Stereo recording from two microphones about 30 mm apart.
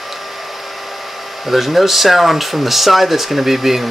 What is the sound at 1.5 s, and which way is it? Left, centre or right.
Speech, centre.